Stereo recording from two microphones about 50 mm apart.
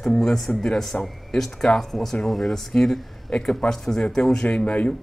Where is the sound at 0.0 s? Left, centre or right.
Centre.